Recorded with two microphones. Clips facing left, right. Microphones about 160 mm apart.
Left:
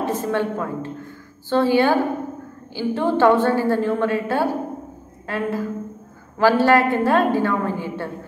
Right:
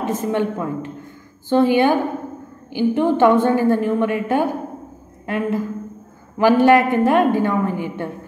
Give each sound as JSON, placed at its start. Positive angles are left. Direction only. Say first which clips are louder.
{"t": 0.0, "sound": "a woman's voice", "louder": "right 1 dB", "side_deg": -15}